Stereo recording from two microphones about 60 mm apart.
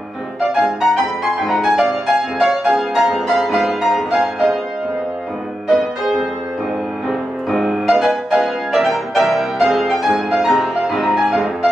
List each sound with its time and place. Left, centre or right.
0.6 s music: centre
5.7 s music: centre